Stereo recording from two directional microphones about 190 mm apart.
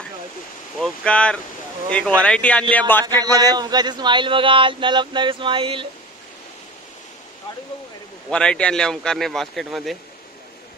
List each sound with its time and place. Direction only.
0.7 s speech: 5° left (ahead or behind)
3.3 s a man's voice: 20° right (ahead or behind)
8.3 s speech: 5° left (ahead or behind)